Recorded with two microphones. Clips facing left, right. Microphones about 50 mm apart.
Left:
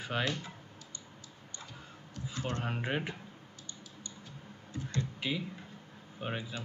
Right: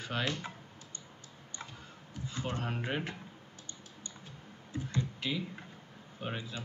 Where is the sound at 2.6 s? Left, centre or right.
Centre.